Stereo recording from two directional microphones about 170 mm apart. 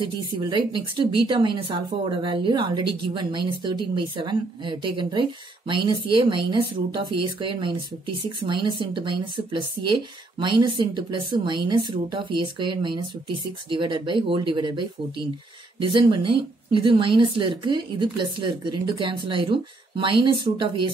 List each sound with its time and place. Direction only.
0.0 s a woman's voice: 30° right (ahead or behind)